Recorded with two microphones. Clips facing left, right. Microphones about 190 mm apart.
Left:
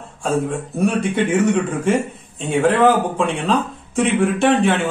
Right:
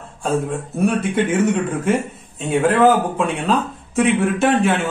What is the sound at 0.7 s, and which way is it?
A man's voice, centre (ahead or behind).